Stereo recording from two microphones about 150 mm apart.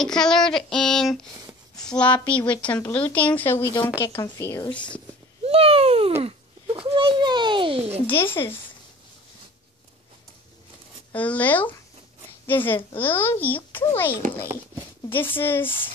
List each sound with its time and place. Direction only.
0.0 s a woman's voice: 5° left (ahead or behind)
4.6 s a woman's voice: 10° left (ahead or behind)
5.4 s a sound: 40° right (ahead or behind)
6.2 s a child's voice: 40° right (ahead or behind)
8.1 s a woman's voice: 15° left (ahead or behind)
11.1 s a woman's voice: 10° left (ahead or behind)
15.4 s a woman's voice: 15° left (ahead or behind)